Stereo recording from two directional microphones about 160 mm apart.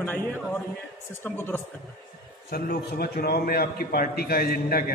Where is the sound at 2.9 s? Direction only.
80° left.